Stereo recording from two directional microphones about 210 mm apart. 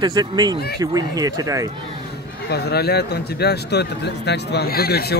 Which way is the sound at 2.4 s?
50° left (ahead or behind).